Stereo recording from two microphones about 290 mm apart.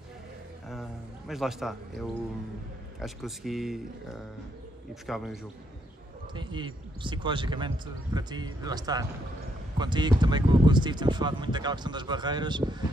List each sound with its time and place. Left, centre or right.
0.7 s a sound: centre
3.0 s speech: centre
6.3 s speech: centre